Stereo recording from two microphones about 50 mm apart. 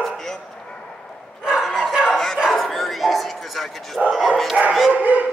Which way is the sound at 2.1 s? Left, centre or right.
Centre.